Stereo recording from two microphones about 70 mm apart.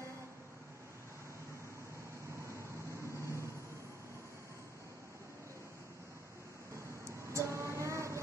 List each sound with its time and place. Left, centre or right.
3.2 s vehicle: right
7.3 s music: right